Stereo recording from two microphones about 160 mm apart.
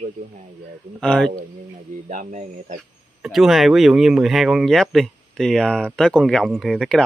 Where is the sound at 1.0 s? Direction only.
5° left (ahead or behind).